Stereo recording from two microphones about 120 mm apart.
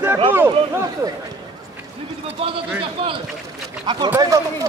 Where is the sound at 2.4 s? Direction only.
55° right (ahead or behind).